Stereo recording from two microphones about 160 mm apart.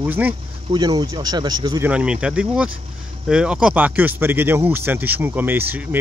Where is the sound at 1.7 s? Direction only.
10° right (ahead or behind).